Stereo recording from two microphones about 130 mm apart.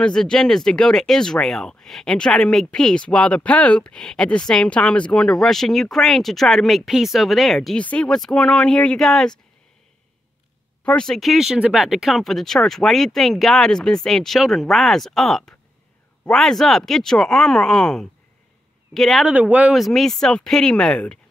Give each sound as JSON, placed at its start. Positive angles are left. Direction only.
{"t": 0.0, "sound": "speech", "side_deg": 5}
{"t": 10.8, "sound": "speech", "side_deg": 5}
{"t": 19.3, "sound": "speech", "side_deg": -10}